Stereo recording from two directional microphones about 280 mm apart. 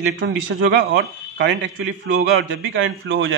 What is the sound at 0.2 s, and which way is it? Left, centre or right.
A man's voice, right.